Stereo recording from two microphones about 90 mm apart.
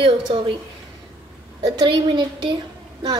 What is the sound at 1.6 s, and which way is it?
Speech, 55° right (ahead or behind).